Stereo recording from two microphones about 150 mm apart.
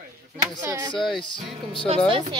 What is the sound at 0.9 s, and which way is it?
Music, centre (ahead or behind).